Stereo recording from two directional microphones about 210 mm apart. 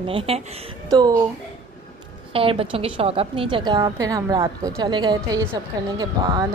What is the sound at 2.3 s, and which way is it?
A woman's voice, 25° right (ahead or behind).